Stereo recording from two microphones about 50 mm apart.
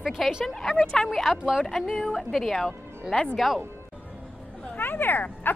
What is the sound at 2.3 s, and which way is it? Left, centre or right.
Speech, centre.